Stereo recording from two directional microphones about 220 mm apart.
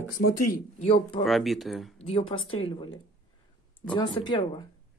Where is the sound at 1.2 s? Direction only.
Centre (ahead or behind).